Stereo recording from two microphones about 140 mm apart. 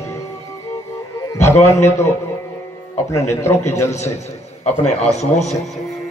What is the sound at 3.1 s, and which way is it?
Speech, 20° left (ahead or behind).